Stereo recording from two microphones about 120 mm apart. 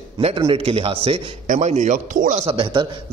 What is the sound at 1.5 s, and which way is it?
Speech, 90° right.